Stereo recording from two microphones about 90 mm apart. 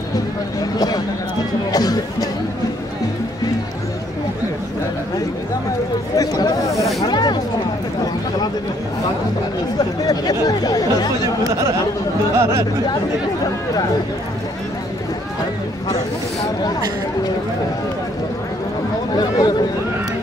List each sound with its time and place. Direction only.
0.7 s speech: 45° left (ahead or behind)
1.7 s music: 45° left (ahead or behind)
6.1 s speech: 45° left (ahead or behind)
7.0 s a sound: 50° left (ahead or behind)
10.0 s speech: 45° left (ahead or behind)
12.4 s speech: 35° right (ahead or behind)
19.1 s speech: 50° left (ahead or behind)